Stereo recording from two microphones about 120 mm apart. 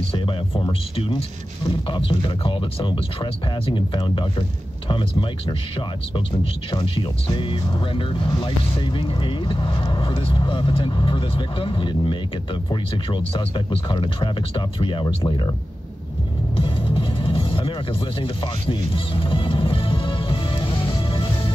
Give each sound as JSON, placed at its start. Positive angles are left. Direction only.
{"t": 0.1, "sound": "speech", "side_deg": 45}
{"t": 16.5, "sound": "music", "side_deg": 45}